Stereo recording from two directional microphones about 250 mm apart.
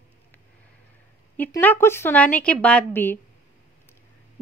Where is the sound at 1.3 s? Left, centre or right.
Centre.